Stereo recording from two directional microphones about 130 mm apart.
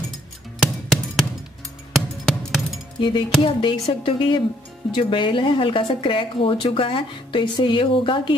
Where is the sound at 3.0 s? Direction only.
40° left (ahead or behind).